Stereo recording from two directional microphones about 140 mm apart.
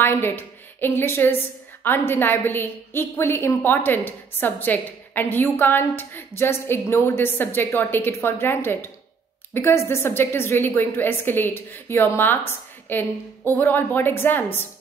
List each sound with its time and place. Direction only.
0.0 s a woman's voice: 15° left (ahead or behind)